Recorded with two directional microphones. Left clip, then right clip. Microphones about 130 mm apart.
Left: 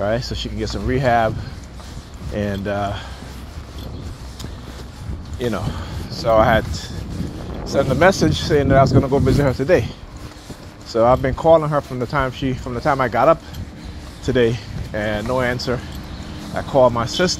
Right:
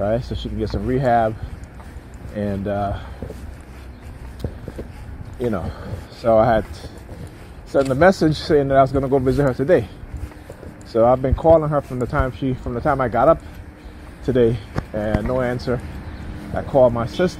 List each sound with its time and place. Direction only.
0.0 s speech: 90° right
2.3 s speech: 90° right
6.0 s speech: 90° right; by 9.8 s 70° right (ahead or behind)
10.9 s speech: 90° right